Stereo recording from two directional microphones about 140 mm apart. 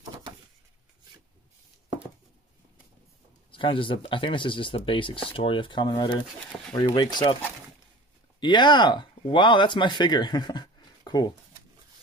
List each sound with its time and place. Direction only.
3.5 s speech: 40° left (ahead or behind)
8.4 s speech: 35° left (ahead or behind)